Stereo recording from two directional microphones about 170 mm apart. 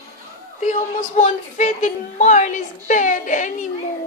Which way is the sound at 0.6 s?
50° left (ahead or behind).